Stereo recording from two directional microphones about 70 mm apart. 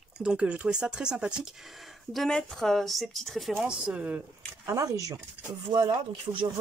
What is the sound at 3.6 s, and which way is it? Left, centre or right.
Speech, centre.